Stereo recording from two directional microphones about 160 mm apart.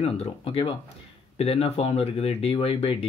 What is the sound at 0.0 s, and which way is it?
Speech, 40° left (ahead or behind).